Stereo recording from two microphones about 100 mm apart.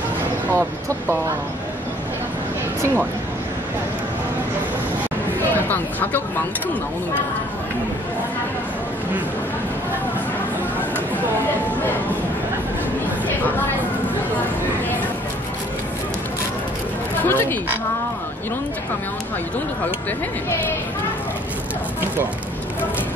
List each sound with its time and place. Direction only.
0.5 s speech: 25° right (ahead or behind)
5.7 s speech: 20° left (ahead or behind)
17.2 s speech: 20° left (ahead or behind)